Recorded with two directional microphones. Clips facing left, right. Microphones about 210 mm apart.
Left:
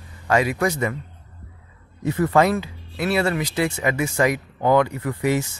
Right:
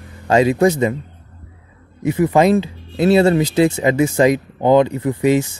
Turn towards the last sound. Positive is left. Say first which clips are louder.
# right 7 dB
turn(degrees=-20)  # may be behind; listen again after turning